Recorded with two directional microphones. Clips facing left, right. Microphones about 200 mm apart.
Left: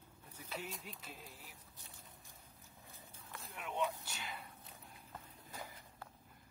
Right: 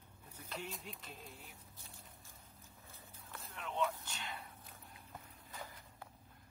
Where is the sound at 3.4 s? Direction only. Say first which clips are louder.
Right 1 dB; 10° left (ahead or behind).